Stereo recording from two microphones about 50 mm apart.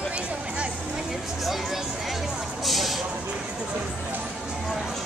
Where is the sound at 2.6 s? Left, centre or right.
Centre.